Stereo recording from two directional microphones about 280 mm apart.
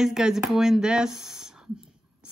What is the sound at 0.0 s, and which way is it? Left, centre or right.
Speech, centre.